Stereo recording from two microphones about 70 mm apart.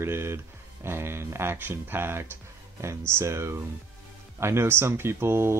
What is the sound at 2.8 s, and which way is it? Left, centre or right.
Speech, right.